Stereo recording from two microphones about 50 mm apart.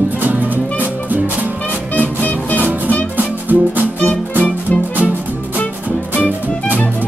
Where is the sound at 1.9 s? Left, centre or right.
Left.